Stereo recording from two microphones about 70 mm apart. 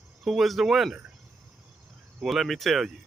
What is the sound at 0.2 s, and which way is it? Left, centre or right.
Speech, centre.